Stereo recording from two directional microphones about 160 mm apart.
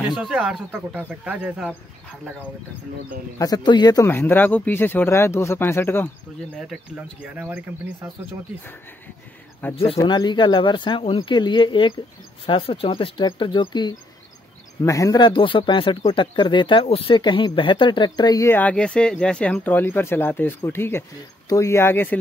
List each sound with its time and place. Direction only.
0.0 s speech: 5° right (ahead or behind)
3.3 s speech: 25° left (ahead or behind)
6.5 s speech: 5° right (ahead or behind)
9.6 s speech: 10° left (ahead or behind)
9.9 s speech: 25° left (ahead or behind); by 22.2 s 10° left (ahead or behind)